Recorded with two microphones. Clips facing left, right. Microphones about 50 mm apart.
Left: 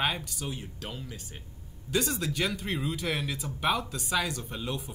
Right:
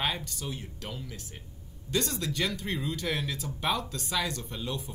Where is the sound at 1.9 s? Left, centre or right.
Centre.